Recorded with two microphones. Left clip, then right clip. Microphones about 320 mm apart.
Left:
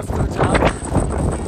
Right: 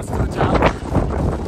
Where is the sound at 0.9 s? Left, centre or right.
Centre.